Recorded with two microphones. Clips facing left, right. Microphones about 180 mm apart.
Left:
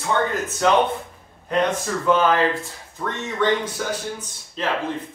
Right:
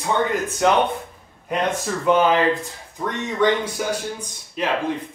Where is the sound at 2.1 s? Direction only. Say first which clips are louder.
Right 2 dB; 15° right (ahead or behind).